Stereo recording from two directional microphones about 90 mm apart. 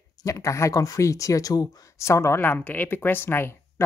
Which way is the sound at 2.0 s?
30° left (ahead or behind).